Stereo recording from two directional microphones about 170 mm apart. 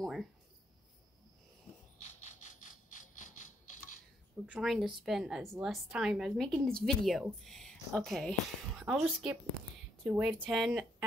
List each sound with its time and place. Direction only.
0.0 s cricket: centre (ahead or behind)
2.0 s a sound: 45° left (ahead or behind)
4.5 s a woman's voice: centre (ahead or behind)